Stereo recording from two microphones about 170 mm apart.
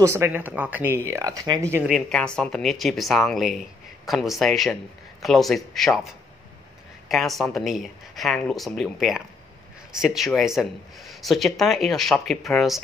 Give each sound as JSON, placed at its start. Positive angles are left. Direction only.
{"t": 0.0, "sound": "speech", "side_deg": -15}
{"t": 1.9, "sound": "speech", "side_deg": 5}
{"t": 7.1, "sound": "speech", "side_deg": 0}